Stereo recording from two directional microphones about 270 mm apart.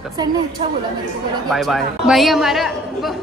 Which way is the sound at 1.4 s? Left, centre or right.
Centre.